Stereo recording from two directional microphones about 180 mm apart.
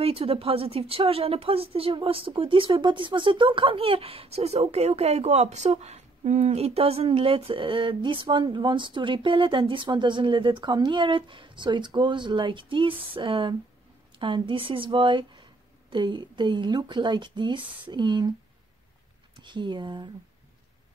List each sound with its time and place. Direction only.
0.0 s a woman's voice: 30° right (ahead or behind)
19.3 s a woman's voice: 25° right (ahead or behind)